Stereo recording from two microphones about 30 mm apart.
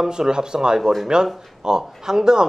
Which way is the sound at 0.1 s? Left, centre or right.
Right.